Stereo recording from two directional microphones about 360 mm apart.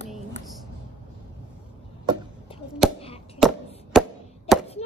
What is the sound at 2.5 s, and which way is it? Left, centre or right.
Chop, centre.